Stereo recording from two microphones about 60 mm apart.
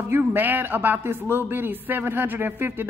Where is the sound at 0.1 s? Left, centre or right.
Right.